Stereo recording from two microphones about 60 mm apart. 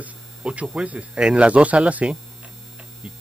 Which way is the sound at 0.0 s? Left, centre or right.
Right.